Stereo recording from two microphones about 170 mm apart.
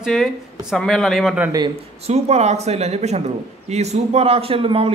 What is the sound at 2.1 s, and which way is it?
A man's voice, 40° right (ahead or behind).